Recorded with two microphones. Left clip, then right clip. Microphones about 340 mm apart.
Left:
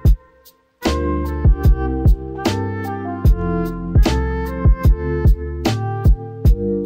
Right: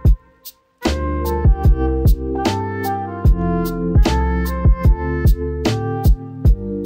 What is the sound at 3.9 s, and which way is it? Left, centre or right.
Music, right.